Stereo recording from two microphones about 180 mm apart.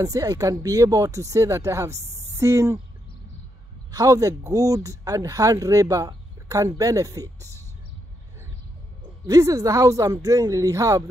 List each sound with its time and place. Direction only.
0.0 s speech: 20° right (ahead or behind)
3.9 s speech: 20° right (ahead or behind)
9.3 s speech: 20° right (ahead or behind)